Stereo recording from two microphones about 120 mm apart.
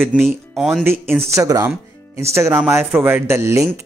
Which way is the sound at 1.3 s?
25° right (ahead or behind).